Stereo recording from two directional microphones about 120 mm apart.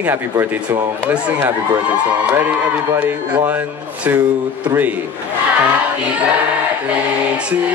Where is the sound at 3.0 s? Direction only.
15° right (ahead or behind).